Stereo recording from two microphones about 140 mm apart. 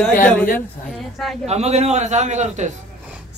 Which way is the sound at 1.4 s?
50° right (ahead or behind).